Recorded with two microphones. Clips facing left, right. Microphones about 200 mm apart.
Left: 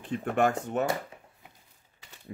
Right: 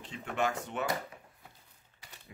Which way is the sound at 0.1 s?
50° left (ahead or behind).